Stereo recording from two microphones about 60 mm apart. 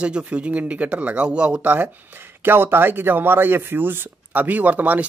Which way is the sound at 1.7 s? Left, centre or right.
Right.